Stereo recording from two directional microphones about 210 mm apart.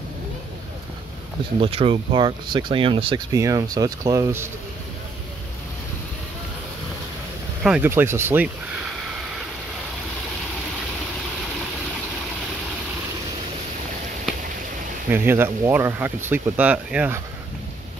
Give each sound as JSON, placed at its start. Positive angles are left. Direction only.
{"t": 1.6, "sound": "speech", "side_deg": -25}
{"t": 7.6, "sound": "speech", "side_deg": -5}
{"t": 15.0, "sound": "speech", "side_deg": -10}